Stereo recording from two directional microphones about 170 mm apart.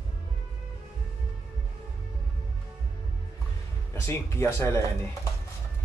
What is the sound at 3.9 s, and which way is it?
Speech, 15° left (ahead or behind).